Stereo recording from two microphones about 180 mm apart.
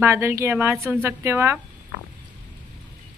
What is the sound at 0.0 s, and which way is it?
Speech, 15° right (ahead or behind).